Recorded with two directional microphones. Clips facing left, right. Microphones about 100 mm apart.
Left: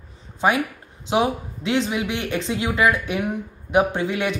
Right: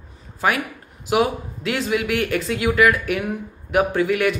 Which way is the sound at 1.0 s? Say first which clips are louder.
Right 1 dB; 25° left (ahead or behind).